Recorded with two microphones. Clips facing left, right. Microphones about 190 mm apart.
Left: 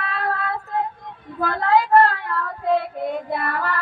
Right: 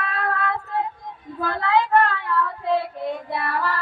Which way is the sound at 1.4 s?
50° left (ahead or behind).